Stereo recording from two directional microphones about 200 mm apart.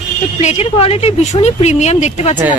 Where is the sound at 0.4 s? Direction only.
35° left (ahead or behind).